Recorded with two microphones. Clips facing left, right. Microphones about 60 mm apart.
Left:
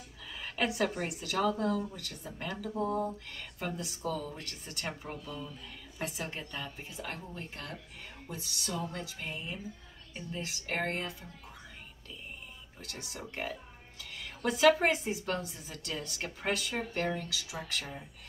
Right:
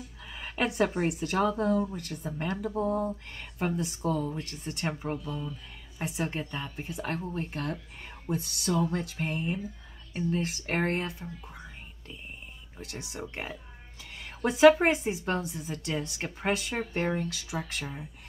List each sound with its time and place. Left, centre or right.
0.3 s a sound: centre
0.7 s speech: right
6.8 s speech: right
12.9 s speech: centre
13.3 s a woman's voice: right